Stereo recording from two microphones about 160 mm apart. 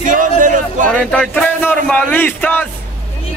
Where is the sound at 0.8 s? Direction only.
5° left (ahead or behind).